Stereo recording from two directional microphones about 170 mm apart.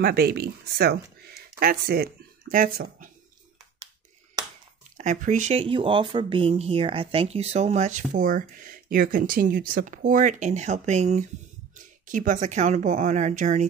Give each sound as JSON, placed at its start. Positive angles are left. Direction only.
{"t": 0.0, "sound": "speech", "side_deg": -65}
{"t": 4.9, "sound": "speech", "side_deg": -45}
{"t": 5.6, "sound": "speech", "side_deg": -30}